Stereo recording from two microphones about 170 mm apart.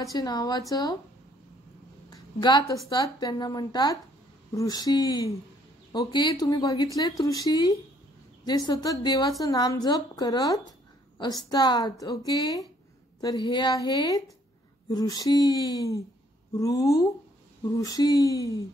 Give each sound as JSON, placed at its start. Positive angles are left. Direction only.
{"t": 0.0, "sound": "speech", "side_deg": 20}
{"t": 2.0, "sound": "a sound", "side_deg": 25}
{"t": 2.9, "sound": "speech", "side_deg": 25}